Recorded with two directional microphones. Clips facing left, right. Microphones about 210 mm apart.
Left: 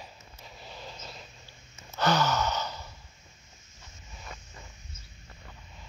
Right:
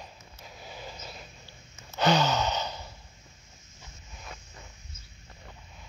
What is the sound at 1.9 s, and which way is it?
Gasp, 15° right (ahead or behind).